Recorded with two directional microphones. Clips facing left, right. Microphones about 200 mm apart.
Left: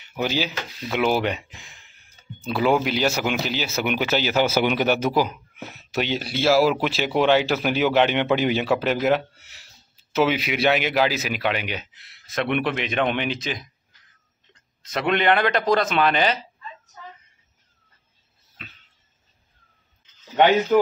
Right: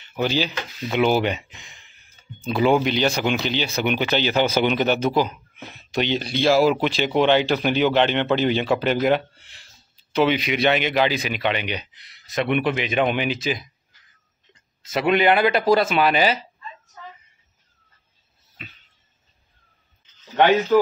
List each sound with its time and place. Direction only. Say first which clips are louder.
0.0 s speech: right 2 dB; 10° left (ahead or behind)
1.6 s a sound: even; centre (ahead or behind)
2.4 s a man's voice: right 2 dB; 5° left (ahead or behind)